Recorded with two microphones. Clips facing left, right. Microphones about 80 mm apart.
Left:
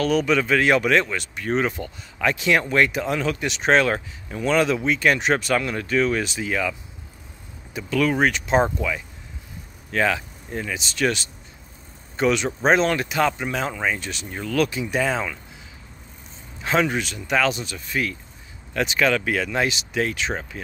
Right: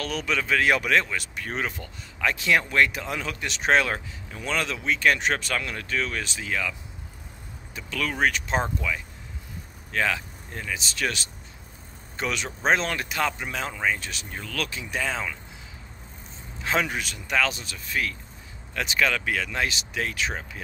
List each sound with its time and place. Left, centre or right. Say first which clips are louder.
0.0 s speech: left 8 dB; centre
7.7 s speech: left 9 dB; centre
16.6 s speech: left 5 dB; centre